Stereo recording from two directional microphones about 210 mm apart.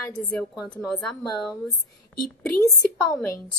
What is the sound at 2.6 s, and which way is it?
Speech, 10° left (ahead or behind).